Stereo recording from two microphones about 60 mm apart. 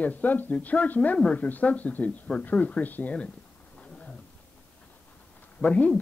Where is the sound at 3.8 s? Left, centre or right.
Left.